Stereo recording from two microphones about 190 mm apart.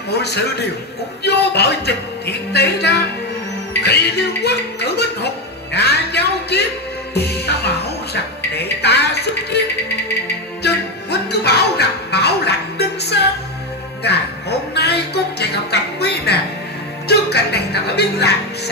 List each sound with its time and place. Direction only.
0.1 s a man's voice: 60° left (ahead or behind)
7.2 s music: 60° left (ahead or behind)
8.5 s a woman's voice: 60° left (ahead or behind)
10.6 s music: 60° left (ahead or behind)
14.7 s a man's voice: 60° left (ahead or behind)